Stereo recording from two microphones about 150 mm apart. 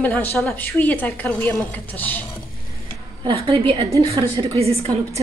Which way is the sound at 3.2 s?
40° right (ahead or behind).